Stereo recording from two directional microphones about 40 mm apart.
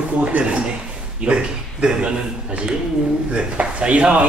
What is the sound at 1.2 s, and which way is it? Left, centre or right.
A man's voice, right.